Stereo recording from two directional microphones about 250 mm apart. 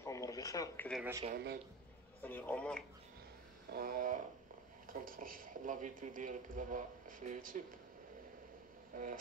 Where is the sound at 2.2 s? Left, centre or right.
Centre.